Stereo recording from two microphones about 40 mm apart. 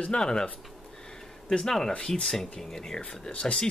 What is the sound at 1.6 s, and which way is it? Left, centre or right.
Speech, centre.